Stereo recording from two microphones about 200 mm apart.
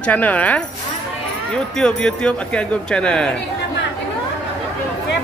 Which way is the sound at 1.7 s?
5° left (ahead or behind).